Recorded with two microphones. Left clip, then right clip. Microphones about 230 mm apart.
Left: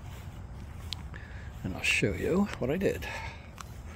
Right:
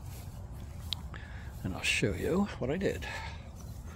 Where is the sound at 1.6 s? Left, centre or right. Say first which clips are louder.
Left 3 dB; centre.